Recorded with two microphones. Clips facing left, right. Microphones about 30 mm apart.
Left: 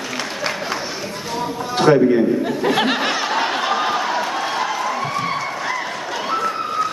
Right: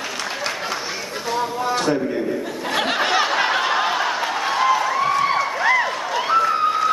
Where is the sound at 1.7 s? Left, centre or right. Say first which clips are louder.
Left 9 dB; left.